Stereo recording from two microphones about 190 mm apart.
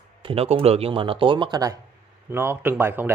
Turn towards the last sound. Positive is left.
turn(degrees=-10)  # may be behind; listen again after turning